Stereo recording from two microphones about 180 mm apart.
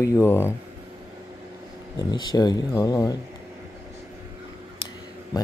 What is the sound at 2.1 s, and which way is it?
Speech, 20° left (ahead or behind).